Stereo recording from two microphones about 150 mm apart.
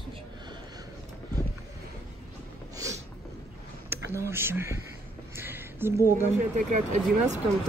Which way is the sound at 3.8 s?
20° right (ahead or behind).